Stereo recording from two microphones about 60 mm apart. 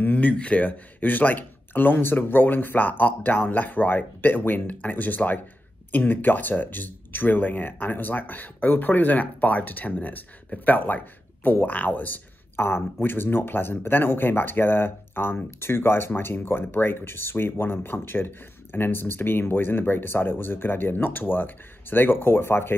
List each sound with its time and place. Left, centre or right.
0.0 s speech: left